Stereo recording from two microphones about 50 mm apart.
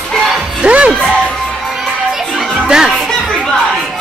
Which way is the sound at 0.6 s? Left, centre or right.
Right.